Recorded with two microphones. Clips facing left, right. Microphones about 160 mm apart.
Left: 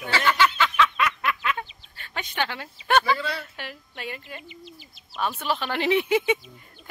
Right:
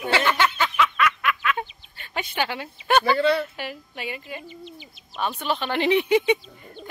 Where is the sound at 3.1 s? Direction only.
60° right (ahead or behind).